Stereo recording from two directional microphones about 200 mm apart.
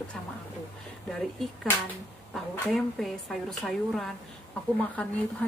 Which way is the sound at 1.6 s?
5° left (ahead or behind).